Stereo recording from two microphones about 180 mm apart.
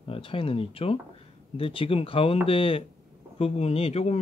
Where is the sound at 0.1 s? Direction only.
30° left (ahead or behind).